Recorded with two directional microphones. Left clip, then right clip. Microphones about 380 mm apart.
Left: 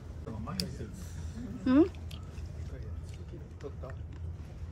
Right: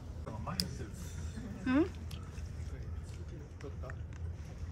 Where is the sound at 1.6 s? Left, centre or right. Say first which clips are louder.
Left 6 dB; centre.